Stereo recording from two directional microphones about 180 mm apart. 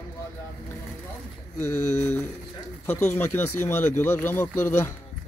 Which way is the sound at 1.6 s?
40° left (ahead or behind).